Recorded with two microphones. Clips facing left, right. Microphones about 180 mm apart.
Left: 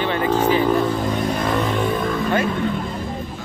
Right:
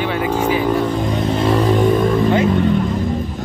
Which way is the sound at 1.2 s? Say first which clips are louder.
Right 5 dB; 25° right (ahead or behind).